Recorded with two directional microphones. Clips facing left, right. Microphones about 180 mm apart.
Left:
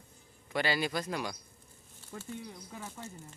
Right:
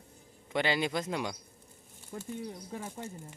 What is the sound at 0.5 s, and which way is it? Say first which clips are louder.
Speech: right 2 dB; 20° right (ahead or behind).